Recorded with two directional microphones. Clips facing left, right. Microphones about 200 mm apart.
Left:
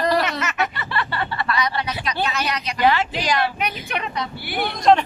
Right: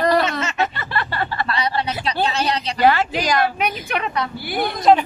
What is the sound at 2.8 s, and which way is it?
A woman's voice, 45° right (ahead or behind).